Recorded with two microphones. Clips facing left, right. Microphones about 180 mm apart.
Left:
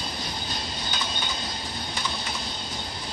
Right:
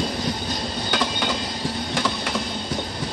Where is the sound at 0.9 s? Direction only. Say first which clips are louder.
Right 10 dB; 90° right.